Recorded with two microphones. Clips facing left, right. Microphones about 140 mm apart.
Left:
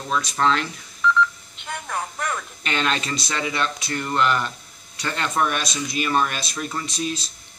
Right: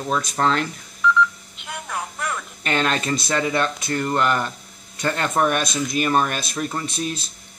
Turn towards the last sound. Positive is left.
turn(degrees=-55)  # may be behind; listen again after turning